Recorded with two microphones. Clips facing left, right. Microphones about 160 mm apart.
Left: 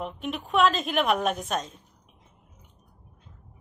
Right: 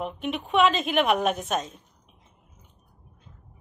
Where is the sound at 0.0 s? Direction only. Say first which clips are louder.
Right 2 dB; centre (ahead or behind).